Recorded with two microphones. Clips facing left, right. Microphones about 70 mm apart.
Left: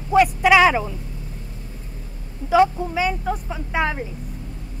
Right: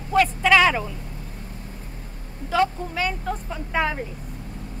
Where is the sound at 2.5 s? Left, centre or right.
Centre.